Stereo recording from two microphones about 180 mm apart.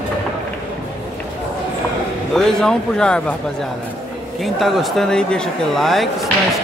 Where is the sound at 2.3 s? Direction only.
Centre (ahead or behind).